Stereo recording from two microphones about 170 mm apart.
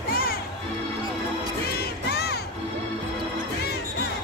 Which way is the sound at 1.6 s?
65° left (ahead or behind).